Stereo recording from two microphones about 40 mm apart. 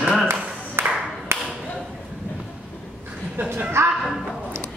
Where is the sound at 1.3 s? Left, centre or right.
Right.